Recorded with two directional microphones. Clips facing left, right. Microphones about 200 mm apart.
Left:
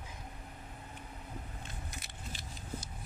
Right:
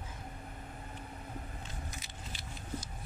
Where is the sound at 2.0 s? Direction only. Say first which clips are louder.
Even; 60° left (ahead or behind).